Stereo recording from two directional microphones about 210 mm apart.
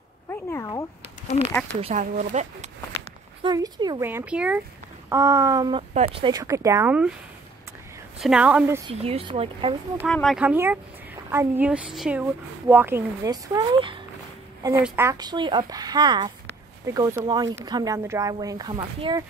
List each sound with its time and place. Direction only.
0.3 s speech: 15° left (ahead or behind)
1.7 s speech: 30° right (ahead or behind)
3.4 s speech: 20° right (ahead or behind)
8.2 s speech: 5° right (ahead or behind)
8.9 s speech: 30° right (ahead or behind)
10.0 s speech: centre (ahead or behind); by 19.2 s 20° right (ahead or behind)